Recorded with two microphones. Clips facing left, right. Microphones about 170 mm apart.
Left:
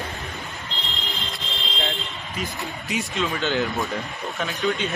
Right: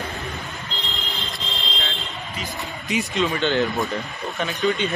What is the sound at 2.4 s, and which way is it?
Speech, centre (ahead or behind).